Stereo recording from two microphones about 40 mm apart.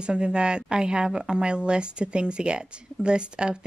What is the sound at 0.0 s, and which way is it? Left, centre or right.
Speech, right.